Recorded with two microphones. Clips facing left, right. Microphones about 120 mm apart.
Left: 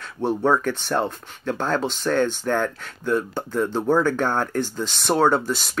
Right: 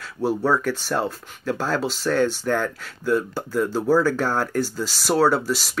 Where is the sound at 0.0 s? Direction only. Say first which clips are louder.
Even; 5° right (ahead or behind).